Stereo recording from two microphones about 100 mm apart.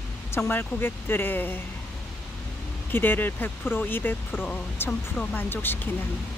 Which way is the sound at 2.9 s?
20° left (ahead or behind).